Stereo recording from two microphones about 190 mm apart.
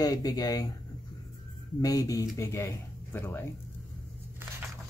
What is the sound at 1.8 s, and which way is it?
Speech, 20° left (ahead or behind).